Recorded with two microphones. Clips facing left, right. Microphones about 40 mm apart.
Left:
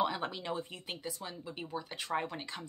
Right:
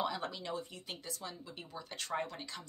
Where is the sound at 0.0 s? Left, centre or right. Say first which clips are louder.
Left 4 dB; left.